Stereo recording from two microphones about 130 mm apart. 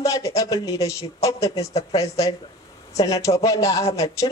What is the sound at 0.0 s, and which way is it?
Speech, 25° left (ahead or behind).